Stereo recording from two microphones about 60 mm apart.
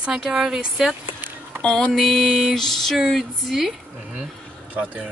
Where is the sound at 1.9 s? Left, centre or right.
Centre.